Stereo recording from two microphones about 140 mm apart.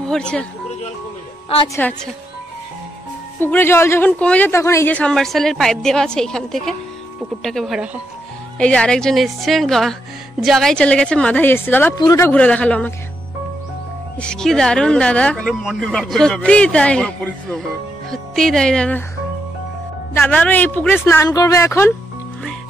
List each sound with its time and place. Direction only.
0.0 s speech: 5° left (ahead or behind)
1.5 s a woman's voice: 45° left (ahead or behind)
3.3 s speech: 15° left (ahead or behind); by 8.0 s 5° right (ahead or behind)
8.5 s speech: 5° left (ahead or behind)
11.9 s speech: 25° left (ahead or behind)
12.3 s speech: 10° left (ahead or behind)
14.1 s speech: 5° left (ahead or behind)
20.2 s speech: 10° left (ahead or behind)